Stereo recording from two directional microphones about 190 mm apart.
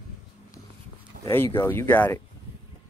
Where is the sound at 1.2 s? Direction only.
50° right (ahead or behind).